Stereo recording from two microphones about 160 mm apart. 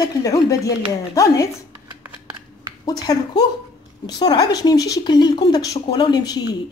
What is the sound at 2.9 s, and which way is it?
A woman's voice, 25° left (ahead or behind).